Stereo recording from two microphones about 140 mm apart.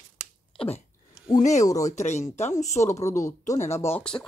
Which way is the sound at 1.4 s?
60° left (ahead or behind).